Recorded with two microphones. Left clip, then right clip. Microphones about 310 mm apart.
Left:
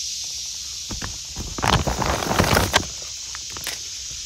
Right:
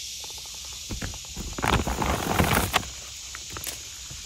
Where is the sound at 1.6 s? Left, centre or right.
Left.